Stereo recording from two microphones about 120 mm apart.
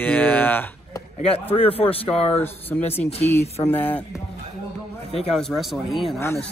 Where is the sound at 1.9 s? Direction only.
55° left (ahead or behind).